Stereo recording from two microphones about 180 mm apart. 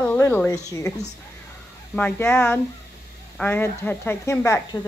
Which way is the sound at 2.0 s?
10° left (ahead or behind).